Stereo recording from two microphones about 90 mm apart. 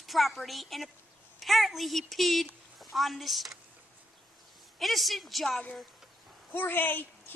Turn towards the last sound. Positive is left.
turn(degrees=20)  # may be behind; listen again after turning